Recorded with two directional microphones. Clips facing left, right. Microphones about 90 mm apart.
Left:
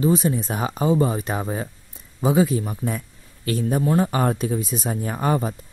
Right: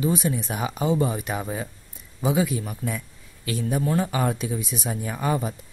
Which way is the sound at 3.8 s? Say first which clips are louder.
Left 4 dB; 30° left (ahead or behind).